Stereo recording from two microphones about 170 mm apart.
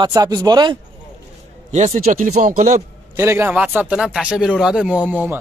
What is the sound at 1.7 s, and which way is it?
Speech, 45° right (ahead or behind).